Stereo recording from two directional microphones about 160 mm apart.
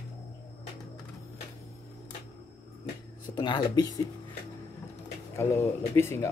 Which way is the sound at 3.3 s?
25° left (ahead or behind).